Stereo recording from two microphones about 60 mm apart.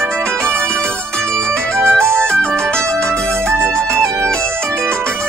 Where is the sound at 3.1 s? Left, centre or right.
Right.